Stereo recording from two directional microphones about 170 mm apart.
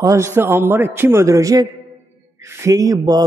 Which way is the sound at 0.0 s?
15° right (ahead or behind).